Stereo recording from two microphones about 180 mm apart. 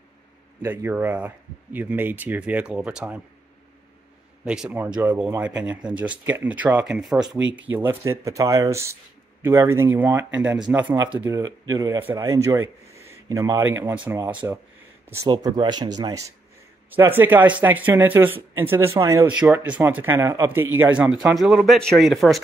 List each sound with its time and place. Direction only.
0.6 s speech: 15° right (ahead or behind)
4.5 s speech: 5° right (ahead or behind)
4.8 s speech: 20° right (ahead or behind)
5.1 s speech: 10° right (ahead or behind)
7.4 s speech: 90° right
7.7 s speech: 10° right (ahead or behind)
15.2 s speech: 25° right (ahead or behind); by 22.4 s centre (ahead or behind)